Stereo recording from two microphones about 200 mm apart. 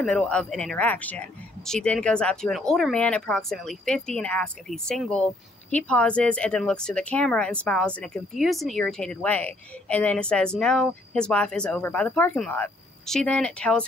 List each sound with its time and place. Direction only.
0.0 s speech: 5° left (ahead or behind)